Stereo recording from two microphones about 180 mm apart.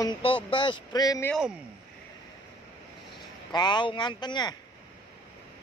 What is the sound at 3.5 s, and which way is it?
Speech, 25° left (ahead or behind).